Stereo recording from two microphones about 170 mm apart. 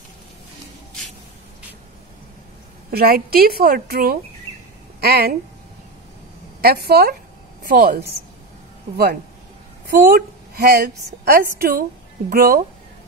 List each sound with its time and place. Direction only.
2.9 s a woman's voice: 65° right (ahead or behind)
6.6 s a woman's voice: 65° right (ahead or behind)
7.6 s a woman's voice: 55° right (ahead or behind)
8.9 s a woman's voice: 65° right (ahead or behind)